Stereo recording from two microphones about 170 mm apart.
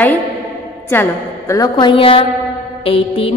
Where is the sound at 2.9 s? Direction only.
35° left (ahead or behind).